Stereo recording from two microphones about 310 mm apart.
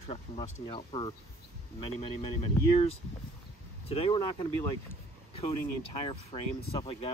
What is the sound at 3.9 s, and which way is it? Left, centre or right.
Speech, centre.